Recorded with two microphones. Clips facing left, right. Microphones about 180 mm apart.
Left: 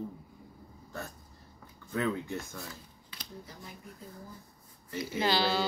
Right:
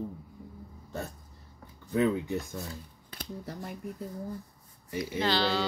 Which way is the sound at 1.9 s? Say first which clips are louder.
Right 5 dB; 20° right (ahead or behind).